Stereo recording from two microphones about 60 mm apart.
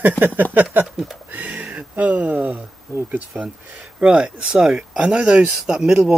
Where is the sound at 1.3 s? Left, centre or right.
Right.